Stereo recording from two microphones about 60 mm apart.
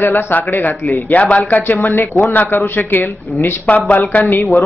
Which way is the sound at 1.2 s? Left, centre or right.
Left.